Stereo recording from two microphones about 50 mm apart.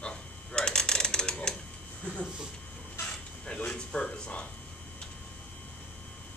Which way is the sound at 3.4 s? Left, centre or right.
Centre.